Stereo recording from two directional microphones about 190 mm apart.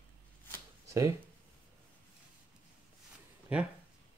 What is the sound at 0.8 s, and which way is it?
Finger snapping, 15° right (ahead or behind).